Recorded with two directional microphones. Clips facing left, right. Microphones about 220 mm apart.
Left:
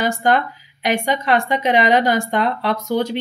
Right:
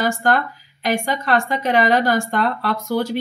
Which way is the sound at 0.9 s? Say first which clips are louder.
Left 2 dB; 20° left (ahead or behind).